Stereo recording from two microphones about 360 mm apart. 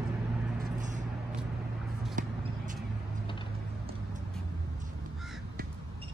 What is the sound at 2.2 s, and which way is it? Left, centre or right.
Vehicle, right.